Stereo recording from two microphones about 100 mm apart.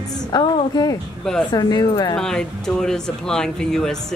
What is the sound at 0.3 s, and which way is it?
A woman's voice, 45° left (ahead or behind).